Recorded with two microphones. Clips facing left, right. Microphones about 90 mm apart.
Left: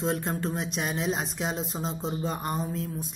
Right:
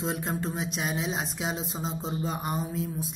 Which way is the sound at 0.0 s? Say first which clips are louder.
Left 2 dB; centre (ahead or behind).